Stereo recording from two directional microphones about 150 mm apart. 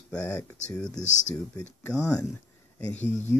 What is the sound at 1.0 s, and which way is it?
Speech, 55° left (ahead or behind).